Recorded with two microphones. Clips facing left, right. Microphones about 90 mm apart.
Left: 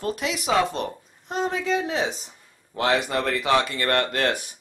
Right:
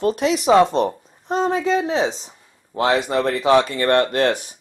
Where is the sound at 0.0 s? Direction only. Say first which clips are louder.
Right 9 dB; 25° right (ahead or behind).